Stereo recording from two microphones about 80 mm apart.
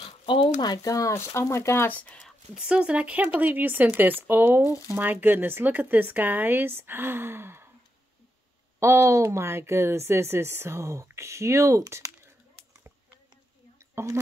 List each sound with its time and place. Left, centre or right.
0.0 s speech: left
1.9 s speech: centre
2.5 s speech: centre; by 7.7 s right
8.7 s speech: right
13.9 s speech: right